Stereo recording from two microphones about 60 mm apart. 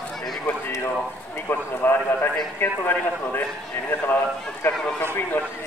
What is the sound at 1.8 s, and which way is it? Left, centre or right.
A man's voice, left.